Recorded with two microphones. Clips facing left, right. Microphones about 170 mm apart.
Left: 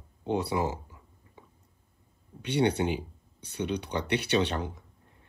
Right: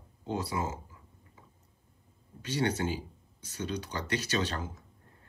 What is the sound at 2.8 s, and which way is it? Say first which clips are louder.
Speech: left 4 dB; 20° left (ahead or behind).